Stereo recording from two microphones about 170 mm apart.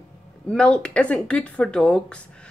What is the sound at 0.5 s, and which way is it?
Speech, 5° left (ahead or behind).